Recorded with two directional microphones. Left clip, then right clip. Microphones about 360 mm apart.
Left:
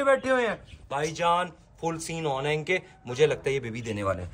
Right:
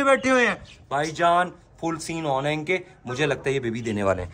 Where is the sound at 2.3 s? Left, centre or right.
Centre.